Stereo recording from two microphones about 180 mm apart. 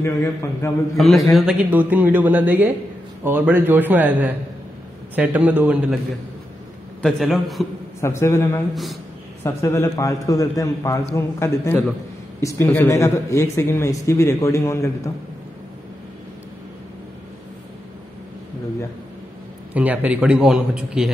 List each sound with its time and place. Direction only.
0.0 s speech: 15° left (ahead or behind)
0.9 s a man's voice: centre (ahead or behind)
7.0 s a man's voice: centre (ahead or behind)
8.0 s speech: 15° left (ahead or behind)
19.7 s a man's voice: 10° right (ahead or behind)